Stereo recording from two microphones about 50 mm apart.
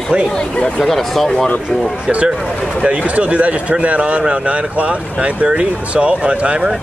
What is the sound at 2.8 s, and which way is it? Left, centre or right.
Speech, right.